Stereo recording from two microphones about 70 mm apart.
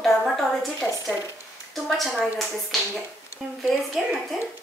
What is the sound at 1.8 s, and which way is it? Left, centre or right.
Speech, centre.